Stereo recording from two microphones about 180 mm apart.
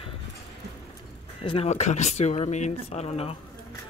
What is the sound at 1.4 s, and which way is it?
Speech, 25° left (ahead or behind).